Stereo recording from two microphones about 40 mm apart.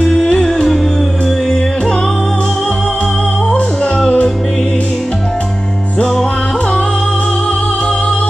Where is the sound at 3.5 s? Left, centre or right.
Left.